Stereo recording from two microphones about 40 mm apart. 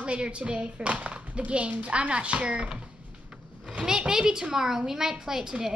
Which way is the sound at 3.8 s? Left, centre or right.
Centre.